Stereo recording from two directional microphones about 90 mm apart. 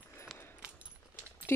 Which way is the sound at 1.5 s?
25° left (ahead or behind).